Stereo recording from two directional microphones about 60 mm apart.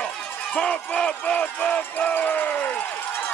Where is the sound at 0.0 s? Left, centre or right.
Centre.